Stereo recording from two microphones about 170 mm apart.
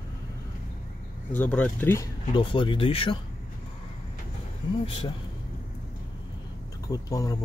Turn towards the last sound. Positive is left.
turn(degrees=20)  # may be behind; listen again after turning